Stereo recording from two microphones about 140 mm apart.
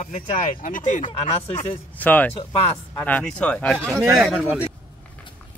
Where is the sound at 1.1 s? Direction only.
50° left (ahead or behind).